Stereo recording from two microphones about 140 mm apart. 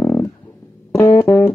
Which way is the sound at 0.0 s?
15° left (ahead or behind).